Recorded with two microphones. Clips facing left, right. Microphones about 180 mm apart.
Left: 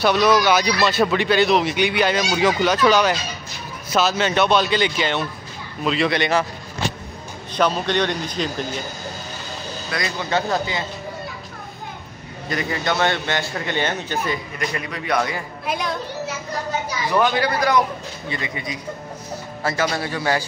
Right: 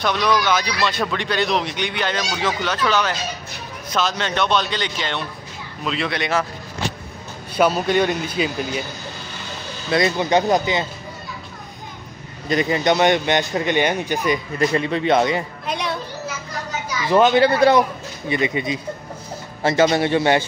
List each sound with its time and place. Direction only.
0.0 s a man's voice: 5° left (ahead or behind)
7.5 s speech: 10° right (ahead or behind)
9.8 s speech: 25° right (ahead or behind)
12.4 s speech: 20° right (ahead or behind)
14.6 s speech: 25° right (ahead or behind)
15.6 s speech: centre (ahead or behind)
17.1 s speech: 25° right (ahead or behind)